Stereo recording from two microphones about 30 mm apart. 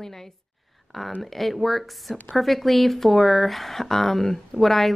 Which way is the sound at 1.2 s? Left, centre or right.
Centre.